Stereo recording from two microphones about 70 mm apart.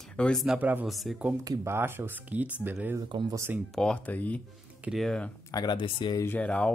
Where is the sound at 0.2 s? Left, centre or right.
Centre.